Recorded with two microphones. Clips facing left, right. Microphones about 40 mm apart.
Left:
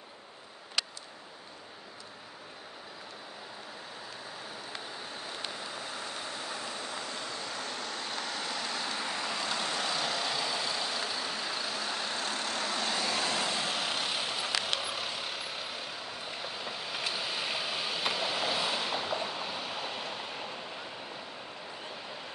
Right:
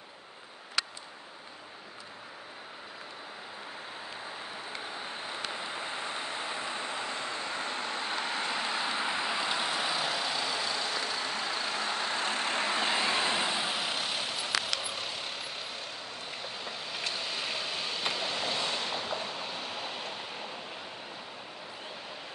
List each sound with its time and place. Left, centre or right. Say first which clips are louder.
4.9 s vehicle: right 3 dB; right; by 11.3 s centre
11.6 s vehicle: right 3 dB; right; by 20.8 s centre